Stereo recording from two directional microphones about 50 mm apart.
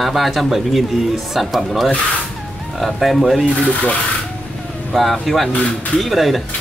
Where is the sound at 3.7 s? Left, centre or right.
Left.